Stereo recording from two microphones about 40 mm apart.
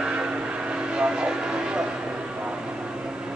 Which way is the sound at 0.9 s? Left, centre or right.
Right.